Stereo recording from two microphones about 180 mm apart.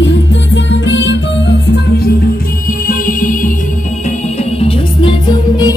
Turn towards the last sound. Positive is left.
turn(degrees=25)  # may be behind; listen again after turning